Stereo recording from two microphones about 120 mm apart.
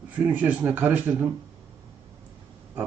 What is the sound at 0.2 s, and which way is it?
Speech, 15° right (ahead or behind).